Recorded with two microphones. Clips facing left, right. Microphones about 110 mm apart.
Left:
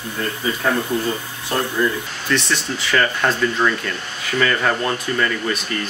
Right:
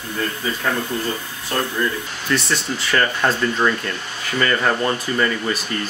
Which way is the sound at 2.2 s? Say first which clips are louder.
Even; centre (ahead or behind).